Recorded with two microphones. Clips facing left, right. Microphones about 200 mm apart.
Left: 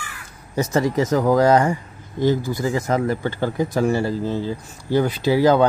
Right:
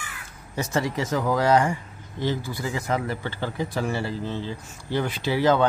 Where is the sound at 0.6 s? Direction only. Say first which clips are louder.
Left 7 dB; 40° left (ahead or behind).